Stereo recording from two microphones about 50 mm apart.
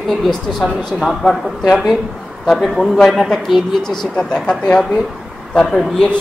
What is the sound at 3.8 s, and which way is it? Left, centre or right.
Speech, centre.